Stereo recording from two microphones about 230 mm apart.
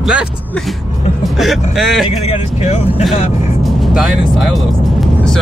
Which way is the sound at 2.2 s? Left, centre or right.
Left.